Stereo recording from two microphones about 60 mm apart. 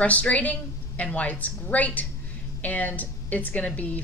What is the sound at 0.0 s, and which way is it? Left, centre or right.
Speech, left.